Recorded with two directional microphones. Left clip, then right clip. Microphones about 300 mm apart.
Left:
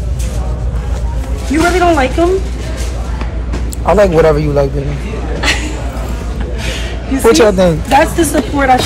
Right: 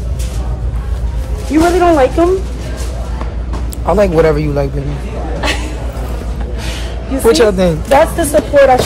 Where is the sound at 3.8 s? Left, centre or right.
Centre.